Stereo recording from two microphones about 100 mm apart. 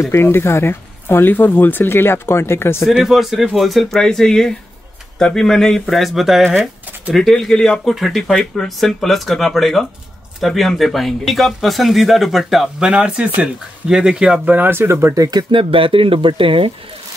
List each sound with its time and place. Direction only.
0.0 s speech: 25° left (ahead or behind)
2.9 s speech: centre (ahead or behind); by 15.1 s 25° right (ahead or behind)
15.5 s speech: 65° right (ahead or behind)